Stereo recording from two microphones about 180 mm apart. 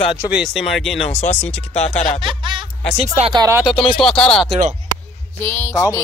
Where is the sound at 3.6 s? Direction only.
30° left (ahead or behind).